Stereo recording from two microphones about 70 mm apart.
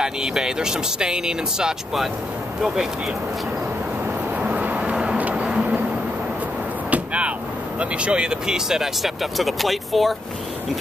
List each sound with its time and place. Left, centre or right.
0.0 s speech: centre
4.4 s vehicle: right
6.9 s vehicle: centre
7.8 s speech: centre